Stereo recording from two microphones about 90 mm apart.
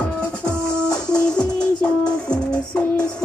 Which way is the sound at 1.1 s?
10° left (ahead or behind).